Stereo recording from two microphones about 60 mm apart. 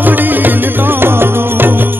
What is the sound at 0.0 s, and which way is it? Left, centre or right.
Music, right.